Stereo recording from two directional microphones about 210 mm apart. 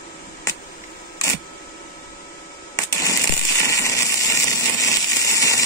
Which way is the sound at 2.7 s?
15° left (ahead or behind).